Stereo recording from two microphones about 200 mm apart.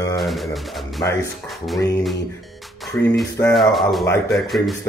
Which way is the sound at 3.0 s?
5° left (ahead or behind).